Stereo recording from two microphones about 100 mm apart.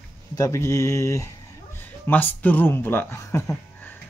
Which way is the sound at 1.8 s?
20° left (ahead or behind).